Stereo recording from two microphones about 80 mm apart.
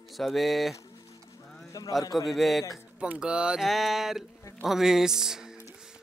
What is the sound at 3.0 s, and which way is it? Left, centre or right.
Speech, centre.